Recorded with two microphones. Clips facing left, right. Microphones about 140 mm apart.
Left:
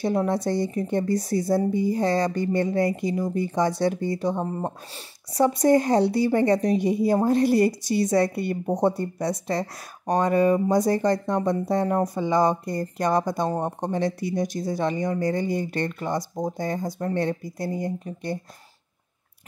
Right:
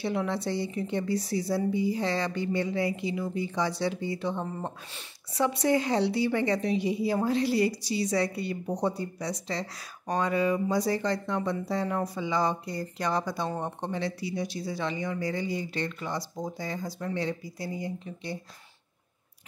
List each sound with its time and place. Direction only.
0.0 s speech: 45° left (ahead or behind)